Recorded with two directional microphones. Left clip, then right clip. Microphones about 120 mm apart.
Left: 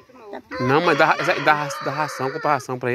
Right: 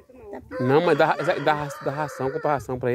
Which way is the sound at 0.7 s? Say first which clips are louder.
Left 2 dB; 25° right (ahead or behind).